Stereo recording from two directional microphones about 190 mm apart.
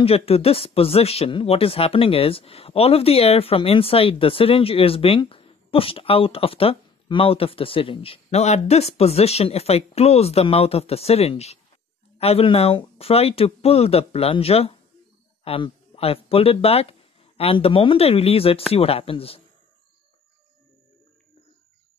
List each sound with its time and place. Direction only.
0.0 s speech: 30° left (ahead or behind)